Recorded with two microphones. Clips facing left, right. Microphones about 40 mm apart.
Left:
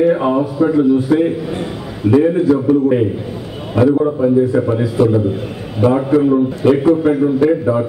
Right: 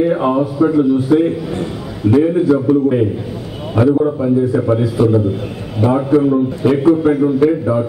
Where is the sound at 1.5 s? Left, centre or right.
Centre.